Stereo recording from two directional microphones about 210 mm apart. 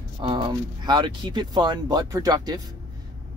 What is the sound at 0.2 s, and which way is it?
Speech, 20° right (ahead or behind).